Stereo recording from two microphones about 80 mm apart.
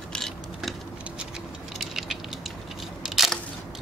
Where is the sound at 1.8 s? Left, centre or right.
Centre.